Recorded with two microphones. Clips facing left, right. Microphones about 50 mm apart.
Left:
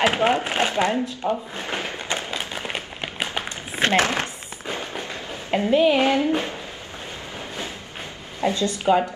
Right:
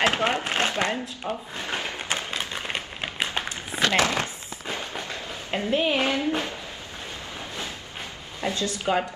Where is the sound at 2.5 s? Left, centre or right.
Centre.